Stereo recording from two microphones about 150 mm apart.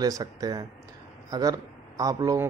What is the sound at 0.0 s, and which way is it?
Speech, 25° right (ahead or behind).